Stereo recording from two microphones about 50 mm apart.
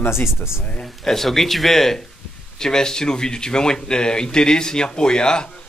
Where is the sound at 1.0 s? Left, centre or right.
Centre.